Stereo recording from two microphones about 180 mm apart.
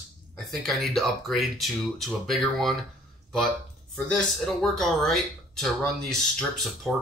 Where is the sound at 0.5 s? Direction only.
Centre (ahead or behind).